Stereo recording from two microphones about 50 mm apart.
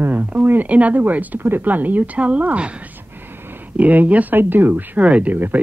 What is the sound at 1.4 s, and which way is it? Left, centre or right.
Speech, right.